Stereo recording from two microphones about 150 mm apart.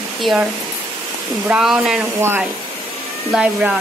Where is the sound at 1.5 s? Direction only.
5° right (ahead or behind).